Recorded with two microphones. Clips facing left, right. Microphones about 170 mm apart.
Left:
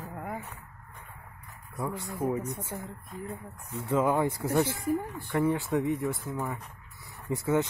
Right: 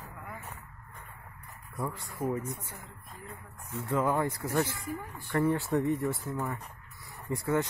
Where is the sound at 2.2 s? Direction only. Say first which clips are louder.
Left 2 dB; 20° left (ahead or behind).